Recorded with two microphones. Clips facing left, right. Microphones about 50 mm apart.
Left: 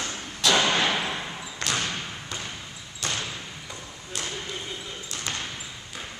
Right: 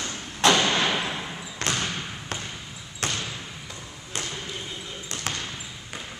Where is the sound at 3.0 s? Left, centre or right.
Right.